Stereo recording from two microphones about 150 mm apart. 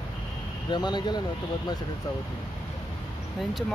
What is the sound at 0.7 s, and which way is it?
Speech, 30° left (ahead or behind).